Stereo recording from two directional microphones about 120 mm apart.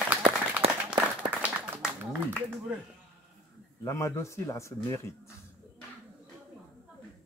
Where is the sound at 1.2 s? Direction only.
15° right (ahead or behind).